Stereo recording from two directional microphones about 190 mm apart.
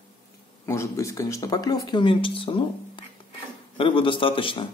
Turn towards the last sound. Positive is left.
turn(degrees=30)  # may be behind; listen again after turning